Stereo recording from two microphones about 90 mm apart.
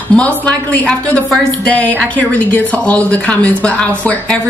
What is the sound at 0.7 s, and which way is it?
Speech, 15° left (ahead or behind).